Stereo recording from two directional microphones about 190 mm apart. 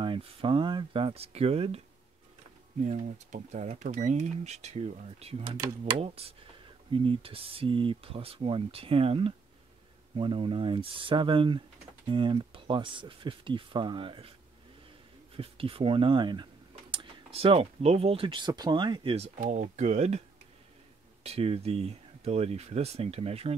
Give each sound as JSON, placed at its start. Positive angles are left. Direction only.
{"t": 0.0, "sound": "speech", "side_deg": -30}
{"t": 2.8, "sound": "speech", "side_deg": -40}
{"t": 15.3, "sound": "speech", "side_deg": -30}
{"t": 19.3, "sound": "speech", "side_deg": -40}